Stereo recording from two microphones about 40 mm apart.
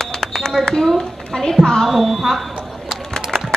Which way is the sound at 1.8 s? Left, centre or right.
Centre.